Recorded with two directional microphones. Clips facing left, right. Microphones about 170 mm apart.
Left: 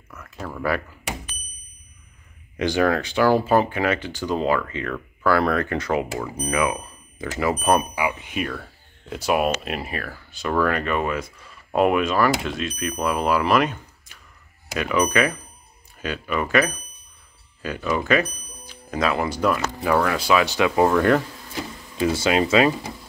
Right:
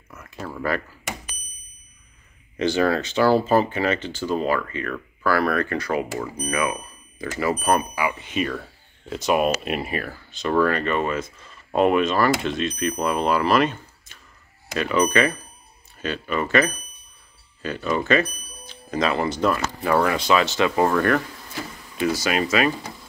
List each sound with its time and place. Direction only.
0.2 s speech: 5° right (ahead or behind)
2.6 s speech: 15° left (ahead or behind); by 10.1 s 5° right (ahead or behind)
10.3 s speech: 5° left (ahead or behind)
22.1 s speech: 25° left (ahead or behind)